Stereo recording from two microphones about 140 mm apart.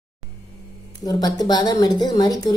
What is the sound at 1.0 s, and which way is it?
A woman's voice, 25° left (ahead or behind).